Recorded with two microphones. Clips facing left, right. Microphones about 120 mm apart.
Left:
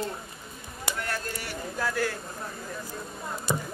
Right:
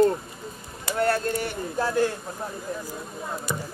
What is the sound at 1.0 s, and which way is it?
Speech, 30° right (ahead or behind).